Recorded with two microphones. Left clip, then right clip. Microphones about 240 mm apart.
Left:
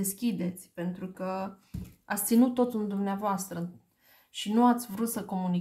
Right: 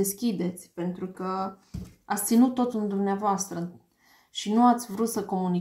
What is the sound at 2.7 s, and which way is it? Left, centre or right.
Speech, left.